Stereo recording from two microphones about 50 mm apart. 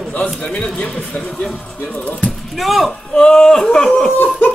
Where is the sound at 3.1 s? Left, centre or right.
Centre.